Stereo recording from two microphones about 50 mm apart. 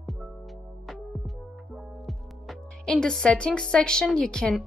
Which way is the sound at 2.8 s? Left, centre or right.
Centre.